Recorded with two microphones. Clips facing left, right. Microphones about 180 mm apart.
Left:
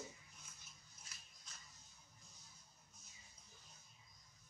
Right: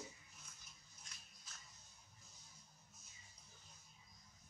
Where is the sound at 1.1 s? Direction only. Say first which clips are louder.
Even; 5° left (ahead or behind).